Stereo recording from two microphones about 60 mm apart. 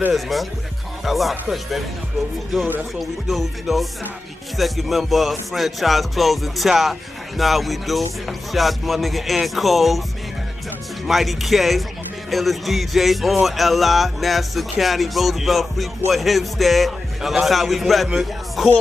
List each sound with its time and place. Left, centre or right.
0.1 s music: centre
3.0 s music: centre
11.1 s music: centre